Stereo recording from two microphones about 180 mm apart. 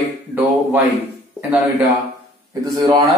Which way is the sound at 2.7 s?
20° right (ahead or behind).